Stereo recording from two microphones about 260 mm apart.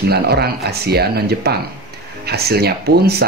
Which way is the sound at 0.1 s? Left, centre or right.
Right.